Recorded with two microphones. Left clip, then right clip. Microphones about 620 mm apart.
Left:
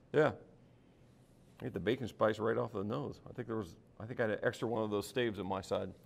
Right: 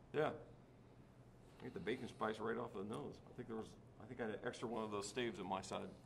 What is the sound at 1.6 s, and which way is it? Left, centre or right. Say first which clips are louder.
Speech: left 9 dB; left.